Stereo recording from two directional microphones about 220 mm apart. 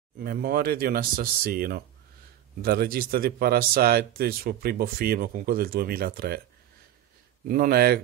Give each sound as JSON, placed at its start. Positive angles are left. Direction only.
{"t": 0.2, "sound": "speech", "side_deg": -45}
{"t": 7.4, "sound": "speech", "side_deg": -45}